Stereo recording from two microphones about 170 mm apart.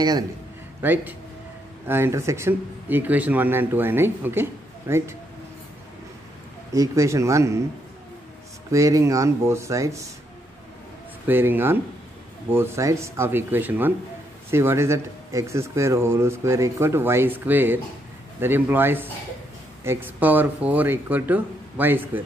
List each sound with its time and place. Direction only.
0.8 s speech: 10° right (ahead or behind)
6.7 s speech: 20° right (ahead or behind)
8.7 s speech: 20° right (ahead or behind)
11.2 s speech: 10° right (ahead or behind)